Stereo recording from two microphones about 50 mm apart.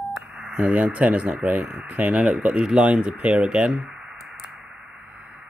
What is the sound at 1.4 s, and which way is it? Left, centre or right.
Speech, right.